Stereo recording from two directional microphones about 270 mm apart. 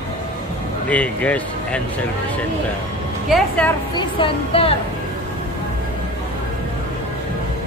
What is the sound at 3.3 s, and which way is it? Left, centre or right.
Speech, centre.